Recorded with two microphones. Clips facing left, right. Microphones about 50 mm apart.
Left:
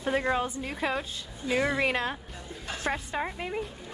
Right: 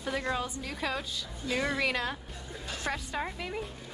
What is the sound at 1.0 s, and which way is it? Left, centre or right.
Speech, centre.